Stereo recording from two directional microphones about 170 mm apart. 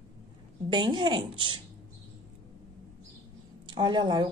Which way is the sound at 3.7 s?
25° right (ahead or behind).